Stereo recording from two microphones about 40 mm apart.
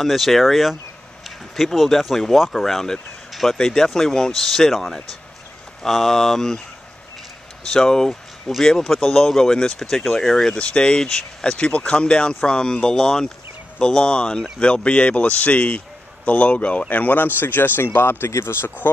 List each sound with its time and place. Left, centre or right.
0.0 s speech: centre
2.6 s speech: centre
5.8 s speech: centre
7.6 s speech: centre
8.1 s speech: centre
10.5 s a man's voice: left
16.9 s speech: left
17.4 s speech: left